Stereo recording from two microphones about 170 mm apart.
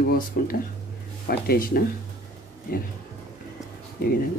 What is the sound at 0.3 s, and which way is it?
Speech, 65° left (ahead or behind).